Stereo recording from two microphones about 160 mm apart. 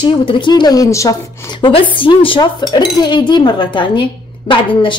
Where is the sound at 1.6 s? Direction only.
35° left (ahead or behind).